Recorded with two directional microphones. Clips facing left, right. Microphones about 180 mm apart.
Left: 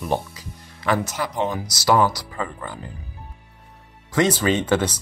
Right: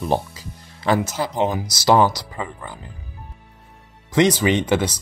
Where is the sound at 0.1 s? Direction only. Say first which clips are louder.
Right 2 dB; 35° right (ahead or behind).